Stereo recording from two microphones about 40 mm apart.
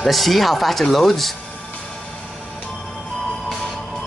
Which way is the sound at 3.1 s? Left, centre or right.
Left.